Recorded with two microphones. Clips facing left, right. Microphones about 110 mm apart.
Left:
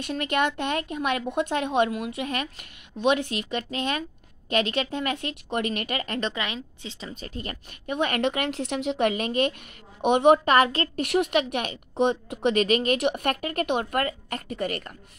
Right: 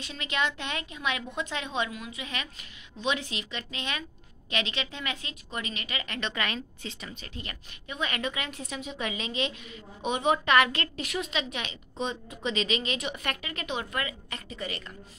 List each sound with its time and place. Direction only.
0.0 s a woman's voice: 55° left (ahead or behind)
6.3 s a woman's voice: 20° left (ahead or behind)
7.2 s a woman's voice: 40° left (ahead or behind)
7.9 s a woman's voice: 60° left (ahead or behind)
10.0 s a woman's voice: 65° left (ahead or behind)
10.4 s a woman's voice: 40° left (ahead or behind)
11.0 s a woman's voice: 60° left (ahead or behind)